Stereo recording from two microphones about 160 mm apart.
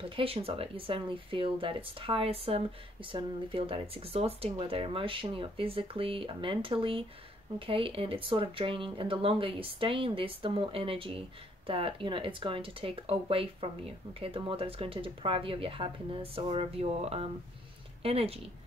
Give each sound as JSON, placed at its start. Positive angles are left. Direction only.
{"t": 0.1, "sound": "speech", "side_deg": -35}